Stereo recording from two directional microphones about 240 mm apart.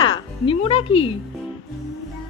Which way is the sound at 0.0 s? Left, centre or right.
Left.